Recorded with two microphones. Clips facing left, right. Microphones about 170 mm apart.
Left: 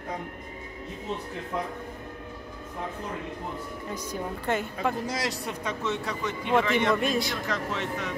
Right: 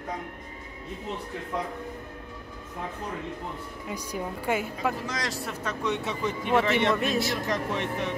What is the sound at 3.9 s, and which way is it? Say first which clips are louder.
A woman's voice: right 1 dB; 10° right (ahead or behind).